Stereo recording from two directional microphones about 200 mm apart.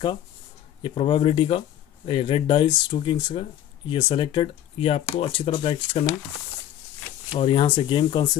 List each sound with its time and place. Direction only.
0.8 s speech: 25° left (ahead or behind)
7.3 s speech: 25° left (ahead or behind)